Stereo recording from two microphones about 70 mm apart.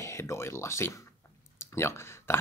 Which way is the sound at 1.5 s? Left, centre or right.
Left.